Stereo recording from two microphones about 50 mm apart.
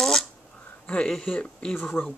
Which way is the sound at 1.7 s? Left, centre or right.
Left.